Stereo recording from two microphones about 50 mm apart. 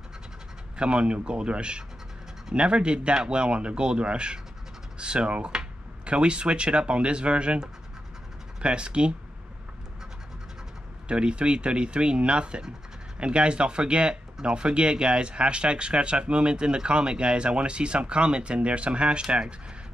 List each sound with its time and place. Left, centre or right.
0.7 s speech: right
11.1 s speech: right